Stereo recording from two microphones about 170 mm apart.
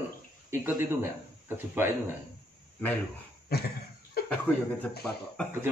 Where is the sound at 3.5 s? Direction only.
65° left (ahead or behind).